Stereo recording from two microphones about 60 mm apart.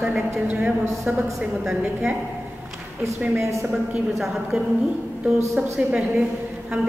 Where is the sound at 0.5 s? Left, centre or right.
Centre.